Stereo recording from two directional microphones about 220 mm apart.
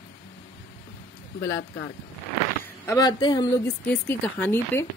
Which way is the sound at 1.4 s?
10° left (ahead or behind).